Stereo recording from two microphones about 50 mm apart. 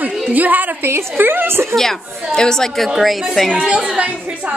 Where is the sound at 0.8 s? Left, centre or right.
Right.